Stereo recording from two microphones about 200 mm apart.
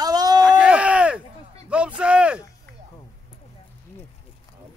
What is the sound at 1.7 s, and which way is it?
Speech, 5° right (ahead or behind).